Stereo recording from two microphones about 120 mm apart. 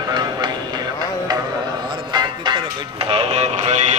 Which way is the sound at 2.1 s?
40° right (ahead or behind).